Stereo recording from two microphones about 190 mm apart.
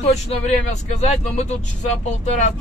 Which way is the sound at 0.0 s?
35° left (ahead or behind).